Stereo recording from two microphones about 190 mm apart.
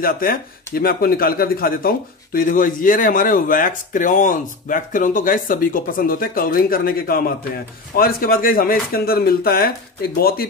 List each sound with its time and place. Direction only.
0.0 s speech: 50° left (ahead or behind)